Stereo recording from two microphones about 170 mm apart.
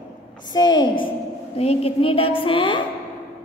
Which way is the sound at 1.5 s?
35° left (ahead or behind).